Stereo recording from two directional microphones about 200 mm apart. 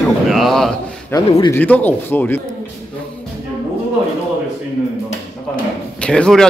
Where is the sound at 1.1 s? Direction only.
15° left (ahead or behind).